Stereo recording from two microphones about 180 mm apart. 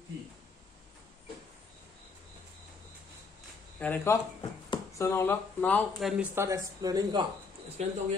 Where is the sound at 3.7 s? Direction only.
10° left (ahead or behind).